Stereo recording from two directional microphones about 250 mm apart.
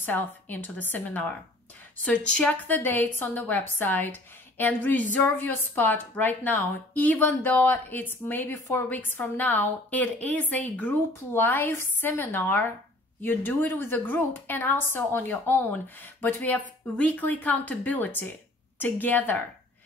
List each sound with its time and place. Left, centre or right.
0.0 s a woman's voice: centre